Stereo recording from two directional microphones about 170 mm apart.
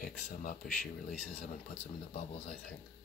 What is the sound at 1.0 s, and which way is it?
Speech, 5° left (ahead or behind).